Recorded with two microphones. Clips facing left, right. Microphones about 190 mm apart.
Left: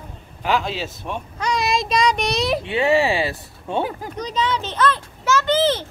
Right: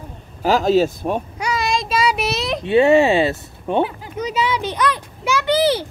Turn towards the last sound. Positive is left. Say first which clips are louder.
# right 2 dB
turn(degrees=-10)  # may be behind; listen again after turning